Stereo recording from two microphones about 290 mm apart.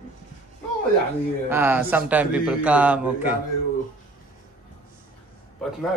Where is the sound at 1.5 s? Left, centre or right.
Centre.